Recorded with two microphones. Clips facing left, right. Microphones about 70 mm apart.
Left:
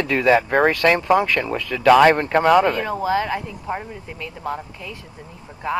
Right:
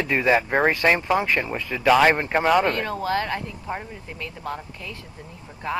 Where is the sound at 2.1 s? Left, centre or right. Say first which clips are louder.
Left 4 dB; centre.